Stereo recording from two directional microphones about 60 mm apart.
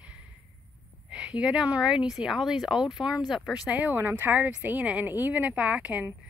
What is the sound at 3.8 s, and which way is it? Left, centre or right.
A woman's voice, right.